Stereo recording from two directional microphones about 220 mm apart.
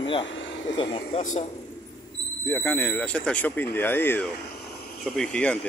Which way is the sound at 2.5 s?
10° left (ahead or behind).